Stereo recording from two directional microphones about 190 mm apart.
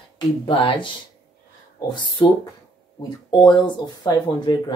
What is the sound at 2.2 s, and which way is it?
Speech, 25° left (ahead or behind).